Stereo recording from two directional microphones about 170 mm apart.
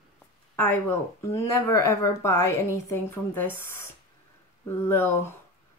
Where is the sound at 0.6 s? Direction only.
15° left (ahead or behind).